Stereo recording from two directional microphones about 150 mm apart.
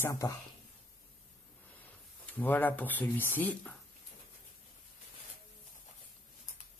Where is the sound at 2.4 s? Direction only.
10° left (ahead or behind).